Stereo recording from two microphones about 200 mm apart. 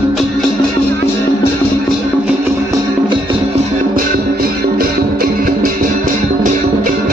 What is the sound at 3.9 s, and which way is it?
Music, 50° right (ahead or behind).